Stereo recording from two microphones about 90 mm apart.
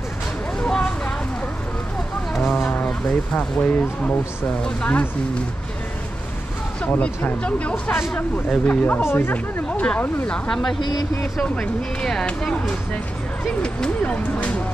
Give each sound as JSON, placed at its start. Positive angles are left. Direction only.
{"t": 0.6, "sound": "vehicle", "side_deg": 10}
{"t": 2.3, "sound": "a sound", "side_deg": 5}
{"t": 3.3, "sound": "speech", "side_deg": 15}
{"t": 6.8, "sound": "speech", "side_deg": 15}
{"t": 10.8, "sound": "speech", "side_deg": 50}
{"t": 11.3, "sound": "speech", "side_deg": 10}